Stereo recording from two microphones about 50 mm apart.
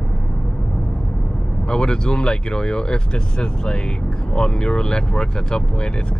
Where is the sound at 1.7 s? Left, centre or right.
Centre.